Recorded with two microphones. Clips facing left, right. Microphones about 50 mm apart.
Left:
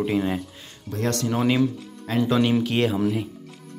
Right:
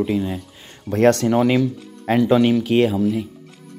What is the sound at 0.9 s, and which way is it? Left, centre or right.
Speech, right.